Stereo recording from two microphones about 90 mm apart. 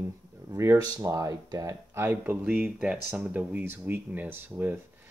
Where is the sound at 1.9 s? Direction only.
25° right (ahead or behind).